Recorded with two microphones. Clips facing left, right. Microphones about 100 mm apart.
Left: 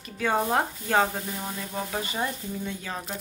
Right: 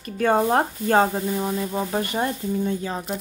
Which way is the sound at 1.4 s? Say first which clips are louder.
Right 8 dB; 25° right (ahead or behind).